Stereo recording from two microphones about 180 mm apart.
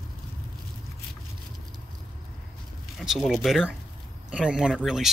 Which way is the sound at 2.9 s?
Centre (ahead or behind).